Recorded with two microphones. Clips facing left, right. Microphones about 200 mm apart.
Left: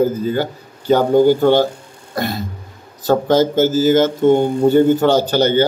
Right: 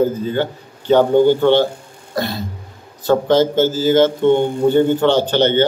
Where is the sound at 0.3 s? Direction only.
40° left (ahead or behind).